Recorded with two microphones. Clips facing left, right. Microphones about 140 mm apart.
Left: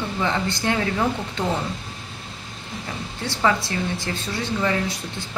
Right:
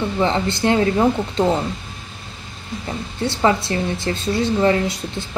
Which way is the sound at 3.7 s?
30° right (ahead or behind).